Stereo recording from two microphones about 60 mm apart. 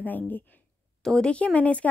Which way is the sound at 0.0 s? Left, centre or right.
Left.